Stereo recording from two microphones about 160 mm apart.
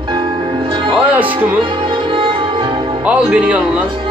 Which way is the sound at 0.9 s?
10° right (ahead or behind).